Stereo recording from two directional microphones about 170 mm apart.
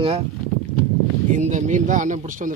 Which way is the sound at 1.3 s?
45° right (ahead or behind).